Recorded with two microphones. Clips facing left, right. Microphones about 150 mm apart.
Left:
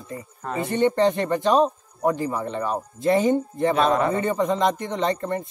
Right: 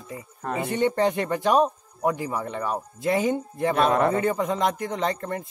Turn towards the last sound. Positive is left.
turn(degrees=-5)  # may be behind; listen again after turning